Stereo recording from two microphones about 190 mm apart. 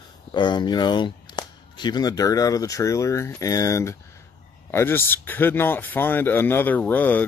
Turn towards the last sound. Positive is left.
turn(degrees=10)  # may be behind; listen again after turning